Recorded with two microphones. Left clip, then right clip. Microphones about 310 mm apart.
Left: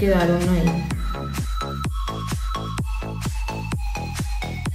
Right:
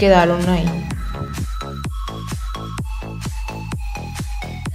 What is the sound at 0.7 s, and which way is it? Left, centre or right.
Music, centre.